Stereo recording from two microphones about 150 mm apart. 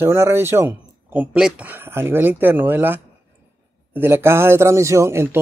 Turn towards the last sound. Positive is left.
turn(degrees=-15)  # may be behind; listen again after turning